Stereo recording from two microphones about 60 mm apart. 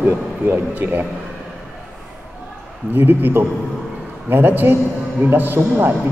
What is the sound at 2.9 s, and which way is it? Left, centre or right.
A man's voice, right.